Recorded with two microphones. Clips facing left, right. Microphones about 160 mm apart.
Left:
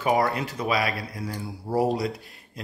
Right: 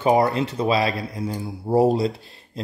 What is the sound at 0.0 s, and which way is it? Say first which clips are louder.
Speech: right 5 dB; 25° right (ahead or behind).